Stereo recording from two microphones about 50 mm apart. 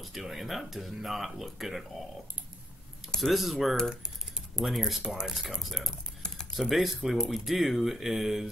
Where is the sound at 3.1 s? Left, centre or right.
Centre.